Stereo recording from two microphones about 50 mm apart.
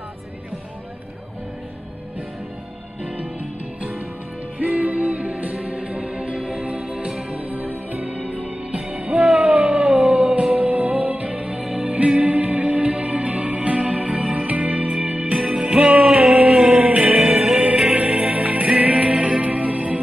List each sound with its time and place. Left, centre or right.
4.7 s music: right
15.4 s music: centre
16.3 s a sound: centre
16.9 s music: right